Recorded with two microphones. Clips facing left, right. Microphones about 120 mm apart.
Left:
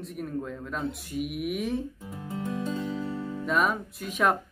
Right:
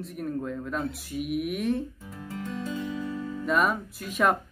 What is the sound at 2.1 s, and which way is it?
Music, 20° left (ahead or behind).